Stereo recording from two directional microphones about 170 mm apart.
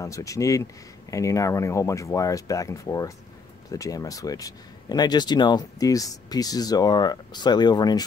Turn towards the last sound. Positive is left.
turn(degrees=25)  # may be behind; listen again after turning